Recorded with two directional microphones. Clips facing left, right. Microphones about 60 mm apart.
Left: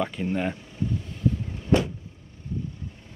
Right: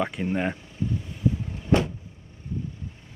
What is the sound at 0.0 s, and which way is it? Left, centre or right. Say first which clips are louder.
Speech: right 1 dB; centre.